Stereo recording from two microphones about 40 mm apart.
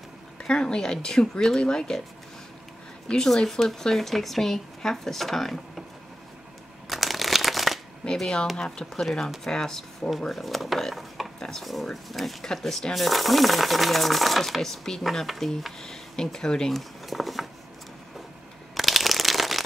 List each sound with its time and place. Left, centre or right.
0.4 s speech: left
3.1 s speech: centre
6.9 s shuffling cards: centre
8.0 s speech: centre
10.3 s speech: centre
15.0 s speech: centre
16.7 s a sound: centre
18.8 s a sound: centre